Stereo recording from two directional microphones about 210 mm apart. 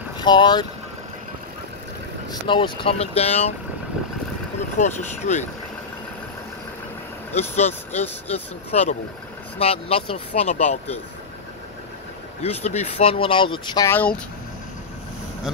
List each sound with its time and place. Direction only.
0.2 s speech: 20° left (ahead or behind)
2.4 s speech: 25° left (ahead or behind)
4.7 s speech: 35° left (ahead or behind)
7.3 s speech: 30° left (ahead or behind)
12.4 s speech: 30° left (ahead or behind); by 14.2 s 10° left (ahead or behind)